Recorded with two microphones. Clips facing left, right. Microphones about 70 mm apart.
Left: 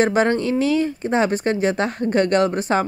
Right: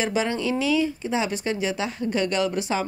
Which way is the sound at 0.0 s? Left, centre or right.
Left.